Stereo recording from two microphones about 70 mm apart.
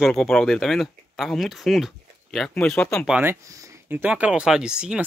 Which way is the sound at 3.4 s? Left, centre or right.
Right.